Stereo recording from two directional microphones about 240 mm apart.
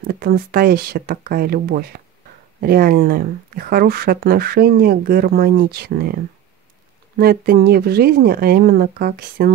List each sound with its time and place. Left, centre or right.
0.0 s speech: right